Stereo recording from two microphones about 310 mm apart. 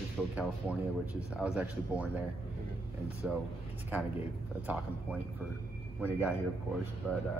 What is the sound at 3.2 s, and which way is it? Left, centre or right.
Speech, centre.